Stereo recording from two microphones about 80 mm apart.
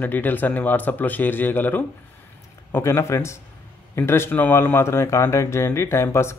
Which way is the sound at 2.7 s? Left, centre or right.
Left.